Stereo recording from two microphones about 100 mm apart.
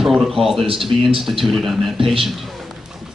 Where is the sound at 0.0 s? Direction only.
5° right (ahead or behind).